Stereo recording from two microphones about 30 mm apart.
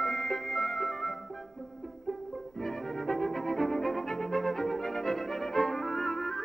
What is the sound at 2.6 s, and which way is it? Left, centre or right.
Music, centre.